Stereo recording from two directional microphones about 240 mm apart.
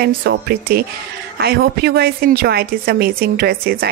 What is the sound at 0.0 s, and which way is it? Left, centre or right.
A woman's voice, right.